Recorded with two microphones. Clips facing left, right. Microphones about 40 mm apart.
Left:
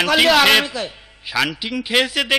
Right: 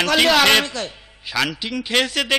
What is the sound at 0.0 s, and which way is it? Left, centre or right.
Speech, centre.